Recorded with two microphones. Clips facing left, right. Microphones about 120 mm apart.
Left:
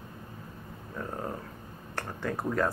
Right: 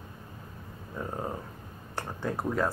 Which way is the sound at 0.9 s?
15° right (ahead or behind).